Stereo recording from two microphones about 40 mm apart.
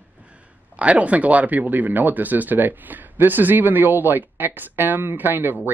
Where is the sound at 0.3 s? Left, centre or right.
Right.